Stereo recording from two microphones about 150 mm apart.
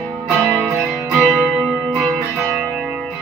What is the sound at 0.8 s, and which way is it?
Music, 5° right (ahead or behind).